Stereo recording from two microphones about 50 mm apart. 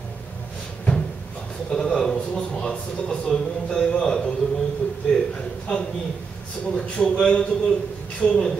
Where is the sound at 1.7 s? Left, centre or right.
Centre.